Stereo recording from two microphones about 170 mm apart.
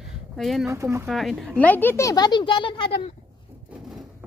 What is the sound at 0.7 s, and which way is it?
Speech, 15° right (ahead or behind).